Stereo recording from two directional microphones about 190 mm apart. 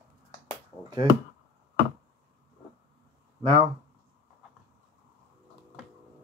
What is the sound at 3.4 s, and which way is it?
Speech, 25° right (ahead or behind).